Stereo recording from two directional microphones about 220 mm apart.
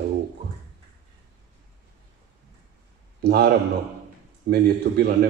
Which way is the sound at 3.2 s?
45° right (ahead or behind).